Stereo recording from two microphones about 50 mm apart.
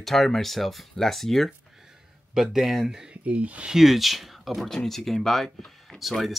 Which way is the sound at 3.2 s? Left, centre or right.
Right.